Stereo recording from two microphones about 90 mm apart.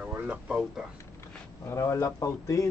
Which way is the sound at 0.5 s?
5° right (ahead or behind).